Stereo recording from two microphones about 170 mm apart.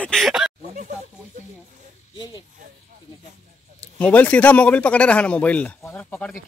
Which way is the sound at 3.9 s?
10° left (ahead or behind).